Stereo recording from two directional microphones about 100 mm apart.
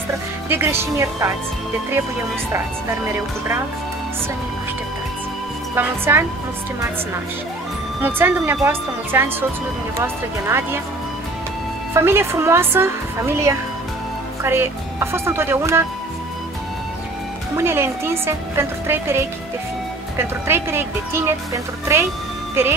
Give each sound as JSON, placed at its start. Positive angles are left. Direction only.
{"t": 0.5, "sound": "a woman's voice", "side_deg": -25}
{"t": 5.8, "sound": "a woman's voice", "side_deg": -20}
{"t": 8.0, "sound": "a woman's voice", "side_deg": -20}
{"t": 11.9, "sound": "a woman's voice", "side_deg": -25}
{"t": 17.6, "sound": "a woman's voice", "side_deg": -25}
{"t": 22.6, "sound": "a woman's voice", "side_deg": -25}